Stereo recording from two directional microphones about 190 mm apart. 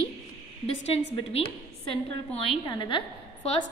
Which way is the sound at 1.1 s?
30° left (ahead or behind).